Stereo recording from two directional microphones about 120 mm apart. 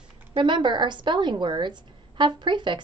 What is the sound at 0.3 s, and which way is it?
Speech, 40° right (ahead or behind).